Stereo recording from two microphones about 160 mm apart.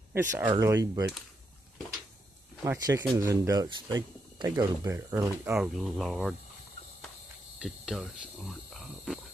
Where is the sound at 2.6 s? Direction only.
20° right (ahead or behind).